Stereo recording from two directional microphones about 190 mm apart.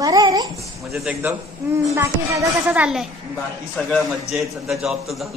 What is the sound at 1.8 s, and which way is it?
A woman's voice, 15° right (ahead or behind).